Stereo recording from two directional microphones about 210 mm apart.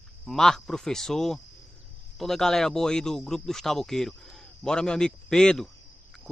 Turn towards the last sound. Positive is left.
turn(degrees=0)  # may be behind; listen again after turning